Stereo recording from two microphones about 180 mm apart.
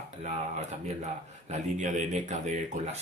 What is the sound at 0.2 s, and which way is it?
Speech, 40° right (ahead or behind).